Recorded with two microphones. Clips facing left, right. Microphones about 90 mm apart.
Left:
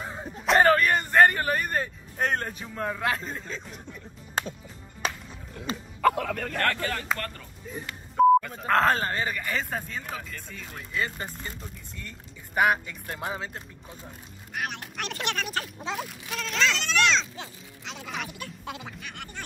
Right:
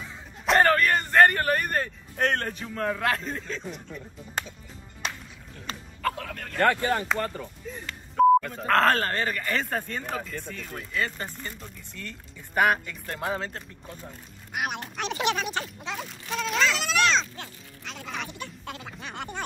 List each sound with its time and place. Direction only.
0.0 s a sound: 50° left (ahead or behind)
0.5 s speech: 5° left (ahead or behind)
5.7 s speech: 5° left (ahead or behind)
6.6 s speech: 15° right (ahead or behind)
7.6 s telephone dialing: 10° left (ahead or behind)
8.4 s speech: centre (ahead or behind)
14.5 s speech: 15° right (ahead or behind)
14.8 s speech: centre (ahead or behind)
17.4 s speech: 15° left (ahead or behind)
18.9 s speech: 25° right (ahead or behind)